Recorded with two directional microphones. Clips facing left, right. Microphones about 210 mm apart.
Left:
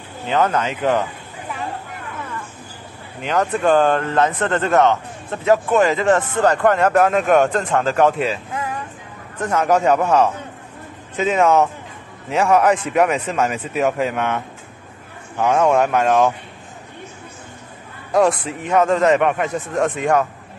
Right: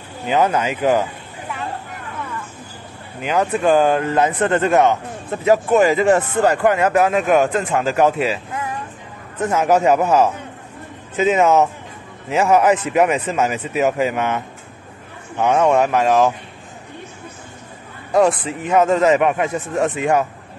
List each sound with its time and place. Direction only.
0.3 s speech: 10° right (ahead or behind)
3.2 s speech: 5° right (ahead or behind)
9.4 s speech: 5° right (ahead or behind)
18.1 s speech: centre (ahead or behind)